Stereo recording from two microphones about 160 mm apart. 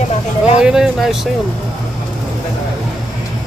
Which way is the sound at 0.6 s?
5° right (ahead or behind).